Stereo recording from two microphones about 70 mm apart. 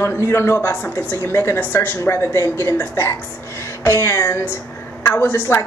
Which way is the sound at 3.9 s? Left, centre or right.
Left.